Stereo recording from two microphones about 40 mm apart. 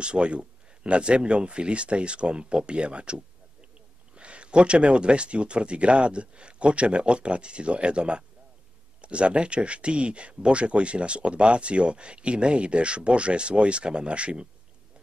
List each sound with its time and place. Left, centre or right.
0.0 s speech: right